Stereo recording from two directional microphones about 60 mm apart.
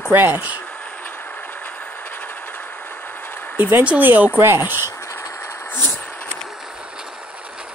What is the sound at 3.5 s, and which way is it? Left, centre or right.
Speech, right.